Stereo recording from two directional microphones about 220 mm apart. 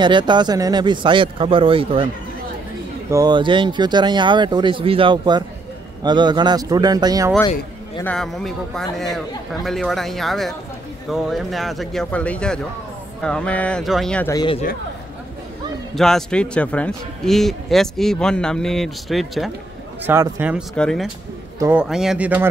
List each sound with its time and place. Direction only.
0.0 s speech: 20° right (ahead or behind)
3.1 s speech: 15° right (ahead or behind)
8.0 s a man's voice: 5° left (ahead or behind)
14.3 s speech: 20° left (ahead or behind)
15.9 s a man's voice: centre (ahead or behind)
20.7 s a man's voice: 5° left (ahead or behind)
21.5 s a man's voice: 10° right (ahead or behind)